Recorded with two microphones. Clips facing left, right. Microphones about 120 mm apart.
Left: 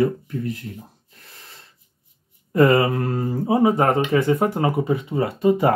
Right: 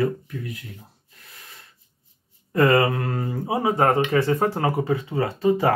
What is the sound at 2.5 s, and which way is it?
Speech, 25° left (ahead or behind).